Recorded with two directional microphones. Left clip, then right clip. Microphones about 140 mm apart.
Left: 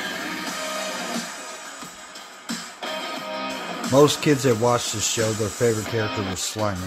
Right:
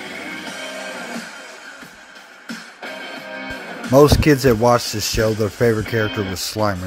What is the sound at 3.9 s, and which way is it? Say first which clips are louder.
Speech: right 5 dB; 55° right (ahead or behind).